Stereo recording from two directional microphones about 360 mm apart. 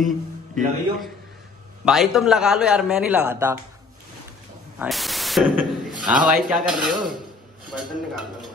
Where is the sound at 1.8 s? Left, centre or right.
Centre.